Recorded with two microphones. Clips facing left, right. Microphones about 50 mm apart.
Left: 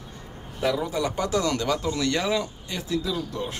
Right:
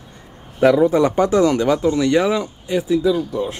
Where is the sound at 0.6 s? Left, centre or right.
Right.